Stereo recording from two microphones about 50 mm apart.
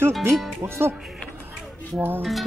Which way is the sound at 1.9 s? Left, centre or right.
Right.